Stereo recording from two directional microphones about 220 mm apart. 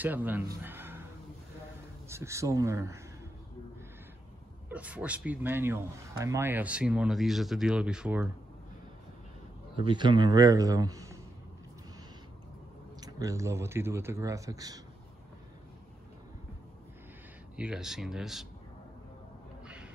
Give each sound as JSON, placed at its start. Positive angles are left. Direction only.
{"t": 0.0, "sound": "a man's voice", "side_deg": -10}
{"t": 2.0, "sound": "speech", "side_deg": -10}
{"t": 4.6, "sound": "speech", "side_deg": -5}
{"t": 9.8, "sound": "speech", "side_deg": -20}
{"t": 13.0, "sound": "speech", "side_deg": -15}
{"t": 17.6, "sound": "speech", "side_deg": -5}
{"t": 19.6, "sound": "a sound", "side_deg": -5}